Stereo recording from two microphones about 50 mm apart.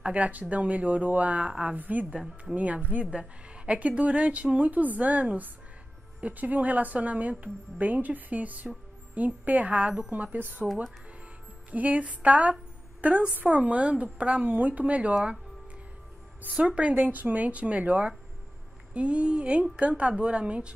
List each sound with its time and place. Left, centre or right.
0.0 s a woman's voice: right
11.7 s a woman's voice: right
16.5 s a woman's voice: right
16.9 s a woman's voice: right